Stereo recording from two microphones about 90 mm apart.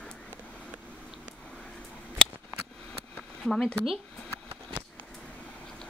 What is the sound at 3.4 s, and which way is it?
Speech, 5° left (ahead or behind).